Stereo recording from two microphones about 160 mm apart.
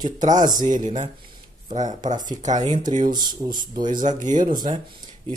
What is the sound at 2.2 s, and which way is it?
Speech, 50° right (ahead or behind).